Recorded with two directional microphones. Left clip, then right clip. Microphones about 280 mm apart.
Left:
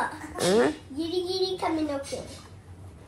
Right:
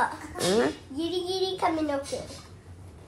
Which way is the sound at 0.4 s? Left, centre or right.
Centre.